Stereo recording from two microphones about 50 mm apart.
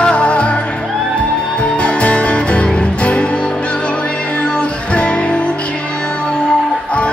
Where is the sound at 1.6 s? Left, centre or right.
Left.